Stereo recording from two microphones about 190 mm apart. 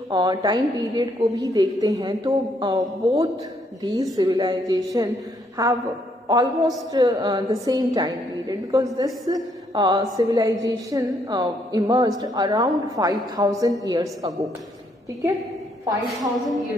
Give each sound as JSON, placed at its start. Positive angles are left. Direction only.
{"t": 0.1, "sound": "a woman's voice", "side_deg": -20}
{"t": 6.9, "sound": "a woman's voice", "side_deg": -20}
{"t": 15.8, "sound": "a woman's voice", "side_deg": -15}